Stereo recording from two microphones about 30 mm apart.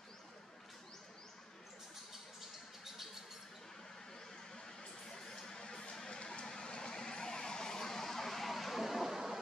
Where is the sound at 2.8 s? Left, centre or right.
Centre.